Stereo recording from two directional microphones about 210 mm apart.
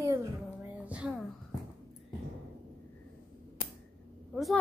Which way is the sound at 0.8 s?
5° right (ahead or behind).